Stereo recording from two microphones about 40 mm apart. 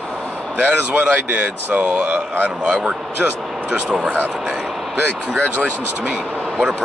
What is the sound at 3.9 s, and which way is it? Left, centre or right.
Speech, right.